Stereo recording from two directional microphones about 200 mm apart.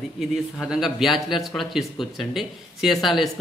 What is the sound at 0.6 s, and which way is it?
Speech, centre (ahead or behind).